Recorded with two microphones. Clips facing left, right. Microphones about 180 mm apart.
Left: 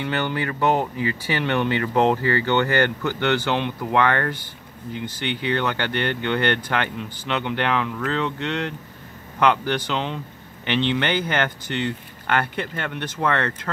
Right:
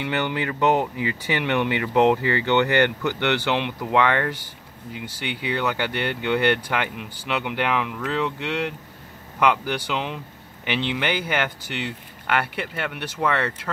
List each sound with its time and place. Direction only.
0.0 s speech: 15° right (ahead or behind)